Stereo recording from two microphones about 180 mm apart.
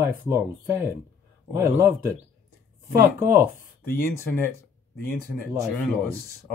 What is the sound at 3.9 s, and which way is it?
Speech, 15° left (ahead or behind).